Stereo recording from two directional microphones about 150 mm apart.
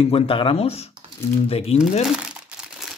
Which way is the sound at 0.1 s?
35° left (ahead or behind).